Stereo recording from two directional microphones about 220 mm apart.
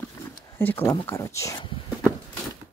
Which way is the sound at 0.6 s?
10° left (ahead or behind).